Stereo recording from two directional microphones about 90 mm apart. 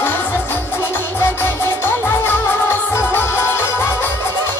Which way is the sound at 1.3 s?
25° left (ahead or behind).